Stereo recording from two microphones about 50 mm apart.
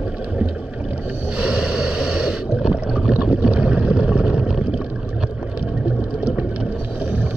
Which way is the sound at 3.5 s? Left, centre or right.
Right.